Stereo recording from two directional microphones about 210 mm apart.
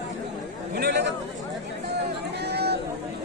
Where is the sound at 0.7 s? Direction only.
50° right (ahead or behind).